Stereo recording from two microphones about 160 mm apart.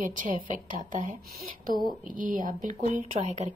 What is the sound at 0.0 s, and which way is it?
Speech, 55° right (ahead or behind).